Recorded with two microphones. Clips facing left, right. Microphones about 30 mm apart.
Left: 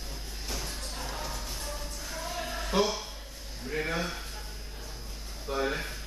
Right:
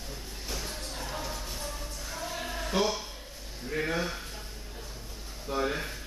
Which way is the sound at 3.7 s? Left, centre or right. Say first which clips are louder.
Right 1 dB; centre.